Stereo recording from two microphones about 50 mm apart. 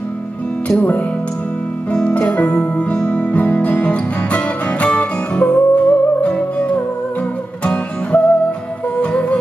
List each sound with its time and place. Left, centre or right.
0.7 s speech: left
2.0 s music: centre